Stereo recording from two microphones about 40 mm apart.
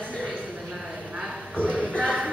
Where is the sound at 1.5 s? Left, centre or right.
Left.